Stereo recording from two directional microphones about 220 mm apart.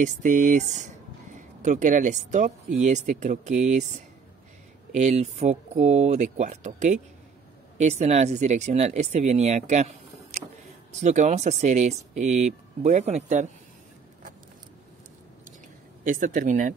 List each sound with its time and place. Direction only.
0.0 s speech: 35° right (ahead or behind)
4.9 s speech: 30° right (ahead or behind)
16.0 s speech: 35° right (ahead or behind)